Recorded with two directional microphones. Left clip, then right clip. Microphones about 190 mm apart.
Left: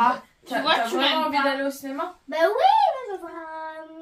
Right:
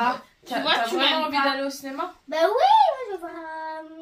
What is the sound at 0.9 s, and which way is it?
Speech, centre (ahead or behind).